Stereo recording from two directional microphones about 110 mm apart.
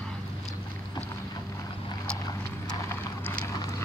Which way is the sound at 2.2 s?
35° left (ahead or behind).